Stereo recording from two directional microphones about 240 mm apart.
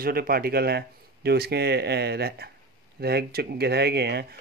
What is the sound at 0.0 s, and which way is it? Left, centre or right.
Speech, right.